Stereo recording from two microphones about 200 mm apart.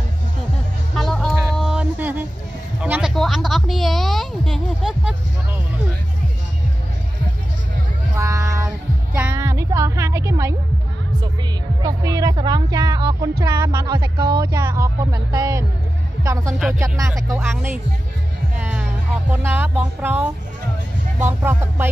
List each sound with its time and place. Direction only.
0.9 s music: centre (ahead or behind)
2.8 s a sound: 5° right (ahead or behind)
8.2 s child singing: 15° right (ahead or behind)
11.8 s music: 15° right (ahead or behind)
16.7 s speech: 15° right (ahead or behind)
17.4 s music: 10° right (ahead or behind)
19.3 s a sound: 10° right (ahead or behind)
21.3 s music: 10° right (ahead or behind)